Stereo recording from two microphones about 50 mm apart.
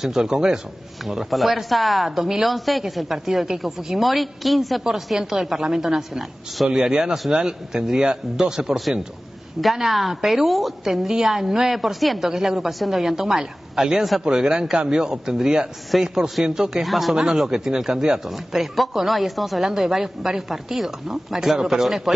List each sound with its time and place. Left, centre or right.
0.0 s speech: centre
1.0 s speech: centre
9.8 s speech: centre
15.9 s speech: centre
16.8 s speech: centre
17.1 s speech: centre